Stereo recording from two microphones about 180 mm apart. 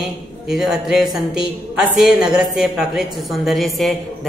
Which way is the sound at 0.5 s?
Centre (ahead or behind).